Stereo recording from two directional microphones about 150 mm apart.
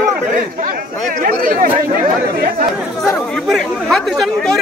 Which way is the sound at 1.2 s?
70° right (ahead or behind).